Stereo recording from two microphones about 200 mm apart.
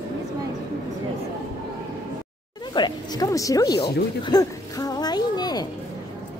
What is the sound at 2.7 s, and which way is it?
A woman's voice, 20° left (ahead or behind).